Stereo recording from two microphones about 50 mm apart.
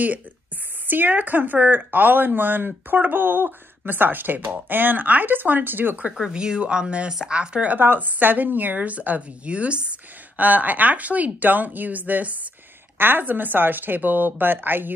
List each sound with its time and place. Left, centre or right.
0.8 s a woman's voice: right
6.3 s speech: centre
7.3 s speech: right
7.7 s a woman's voice: right
12.9 s a woman's voice: right